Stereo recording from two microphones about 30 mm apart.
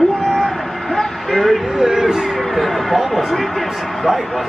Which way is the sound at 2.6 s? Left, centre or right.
Centre.